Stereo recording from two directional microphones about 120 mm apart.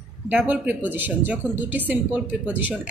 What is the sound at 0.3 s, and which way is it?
Speech, 15° right (ahead or behind).